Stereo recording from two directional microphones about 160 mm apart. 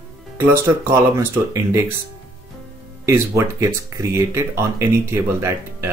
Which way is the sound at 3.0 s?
20° right (ahead or behind).